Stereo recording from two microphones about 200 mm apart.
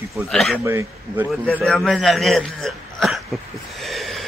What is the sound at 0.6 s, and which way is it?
Speech, 15° right (ahead or behind).